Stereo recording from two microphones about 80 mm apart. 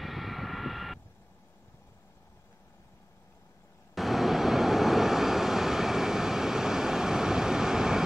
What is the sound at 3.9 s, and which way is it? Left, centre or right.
Vehicle, centre.